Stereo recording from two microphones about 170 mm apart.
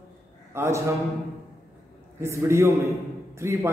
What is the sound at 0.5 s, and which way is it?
Speech, 15° right (ahead or behind).